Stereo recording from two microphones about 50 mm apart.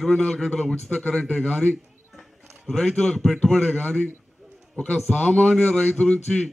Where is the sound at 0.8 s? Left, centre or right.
Centre.